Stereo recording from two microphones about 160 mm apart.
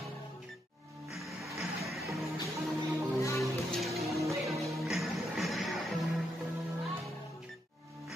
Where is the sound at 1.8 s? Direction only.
Centre (ahead or behind).